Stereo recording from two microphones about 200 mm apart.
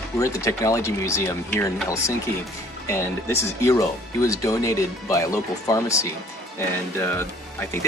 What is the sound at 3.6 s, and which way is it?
Speech, 15° left (ahead or behind).